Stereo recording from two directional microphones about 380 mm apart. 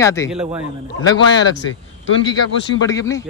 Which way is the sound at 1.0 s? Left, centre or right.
Centre.